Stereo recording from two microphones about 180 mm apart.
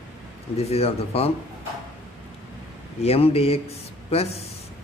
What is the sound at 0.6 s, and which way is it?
Speech, 35° left (ahead or behind).